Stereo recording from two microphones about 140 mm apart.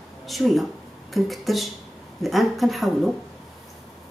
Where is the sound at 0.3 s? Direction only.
Centre (ahead or behind).